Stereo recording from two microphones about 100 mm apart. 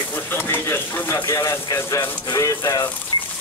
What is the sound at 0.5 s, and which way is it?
Speech, 25° left (ahead or behind).